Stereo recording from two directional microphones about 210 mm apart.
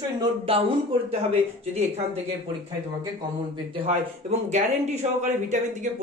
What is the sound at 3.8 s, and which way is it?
Speech, 30° right (ahead or behind).